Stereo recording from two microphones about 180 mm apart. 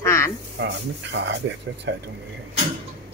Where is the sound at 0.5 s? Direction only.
80° right.